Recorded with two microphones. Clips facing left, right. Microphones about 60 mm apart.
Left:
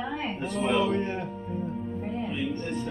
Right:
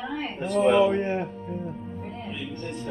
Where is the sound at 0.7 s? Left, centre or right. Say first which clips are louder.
Right 5 dB; right.